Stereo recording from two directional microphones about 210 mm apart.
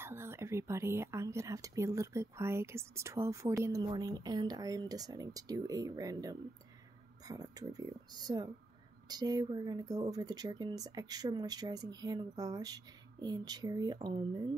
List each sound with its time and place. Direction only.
0.0 s speech: 10° right (ahead or behind)